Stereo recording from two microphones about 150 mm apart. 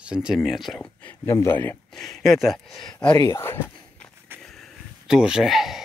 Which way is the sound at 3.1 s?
20° left (ahead or behind).